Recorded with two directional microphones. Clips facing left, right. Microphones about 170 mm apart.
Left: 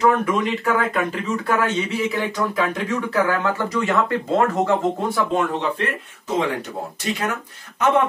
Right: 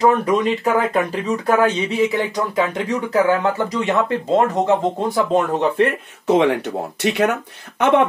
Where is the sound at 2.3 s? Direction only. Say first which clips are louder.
Right 2 dB; 20° right (ahead or behind).